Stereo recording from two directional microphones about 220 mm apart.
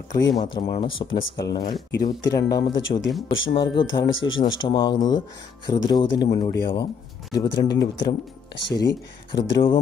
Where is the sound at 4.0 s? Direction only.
60° left (ahead or behind).